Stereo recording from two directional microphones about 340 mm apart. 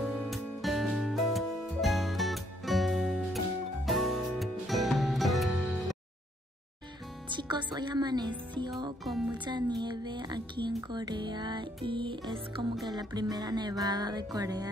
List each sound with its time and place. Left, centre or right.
0.0 s music: centre
7.2 s music: centre
9.0 s speech: centre
9.4 s music: centre